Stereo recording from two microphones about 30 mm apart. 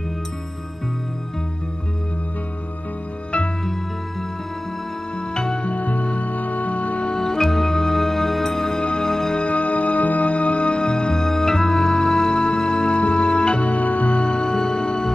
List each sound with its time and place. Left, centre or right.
5.3 s music: left
5.6 s music: left
7.2 s music: left
8.7 s music: left
9.0 s music: centre
9.5 s music: left
10.8 s music: left
13.6 s music: left
14.4 s music: left